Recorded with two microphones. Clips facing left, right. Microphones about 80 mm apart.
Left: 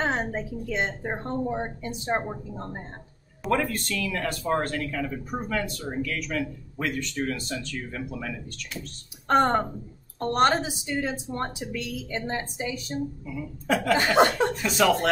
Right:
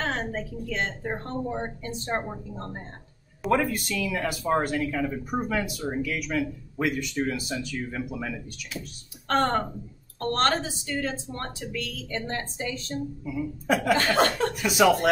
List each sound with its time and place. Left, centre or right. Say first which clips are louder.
0.0 s speech: left 2 dB; centre
3.4 s speech: right 1 dB; centre
9.3 s speech: left 3 dB; centre
13.2 s speech: right 4 dB; centre
13.9 s speech: left 3 dB; centre
14.5 s speech: right 2 dB; centre